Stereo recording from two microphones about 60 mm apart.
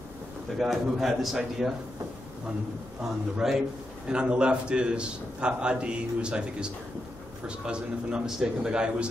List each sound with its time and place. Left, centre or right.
0.6 s a man's voice: centre
3.0 s a man's voice: centre